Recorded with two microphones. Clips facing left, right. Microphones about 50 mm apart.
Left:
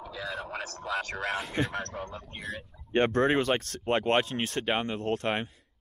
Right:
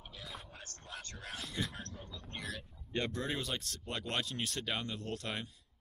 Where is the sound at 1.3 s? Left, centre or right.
Left.